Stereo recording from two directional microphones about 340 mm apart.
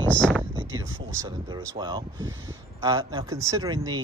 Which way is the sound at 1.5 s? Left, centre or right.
Centre.